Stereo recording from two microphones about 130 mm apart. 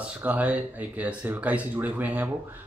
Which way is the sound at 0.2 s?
10° right (ahead or behind).